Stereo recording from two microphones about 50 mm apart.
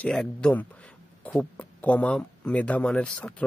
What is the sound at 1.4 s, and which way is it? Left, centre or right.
Speech, left.